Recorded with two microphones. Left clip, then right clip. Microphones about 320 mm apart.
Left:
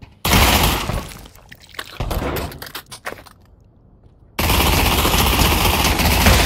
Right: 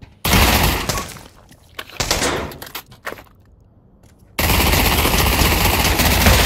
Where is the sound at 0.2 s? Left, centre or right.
Centre.